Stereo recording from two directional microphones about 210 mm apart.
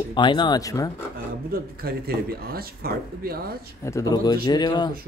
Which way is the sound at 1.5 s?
45° right (ahead or behind).